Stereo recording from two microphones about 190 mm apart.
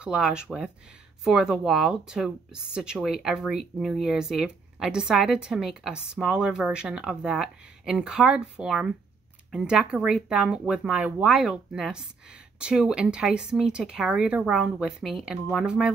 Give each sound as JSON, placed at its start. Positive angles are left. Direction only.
{"t": 0.0, "sound": "speech", "side_deg": -5}